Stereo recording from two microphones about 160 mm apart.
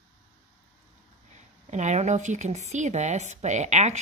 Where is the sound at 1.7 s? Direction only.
50° right (ahead or behind).